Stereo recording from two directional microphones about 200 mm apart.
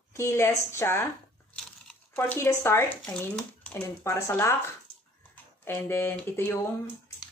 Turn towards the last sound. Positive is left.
turn(degrees=10)  # may be behind; listen again after turning